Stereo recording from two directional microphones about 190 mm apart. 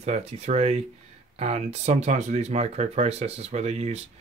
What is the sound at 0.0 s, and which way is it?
Speech, 35° right (ahead or behind).